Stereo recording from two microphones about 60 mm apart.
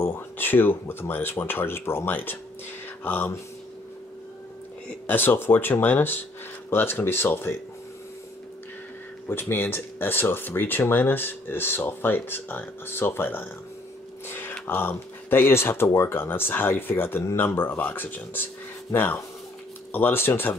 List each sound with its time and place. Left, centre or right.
0.0 s speech: left
5.0 s speech: left
9.3 s speech: left